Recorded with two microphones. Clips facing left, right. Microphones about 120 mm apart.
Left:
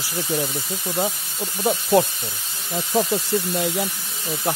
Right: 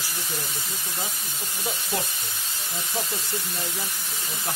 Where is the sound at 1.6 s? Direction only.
60° left (ahead or behind).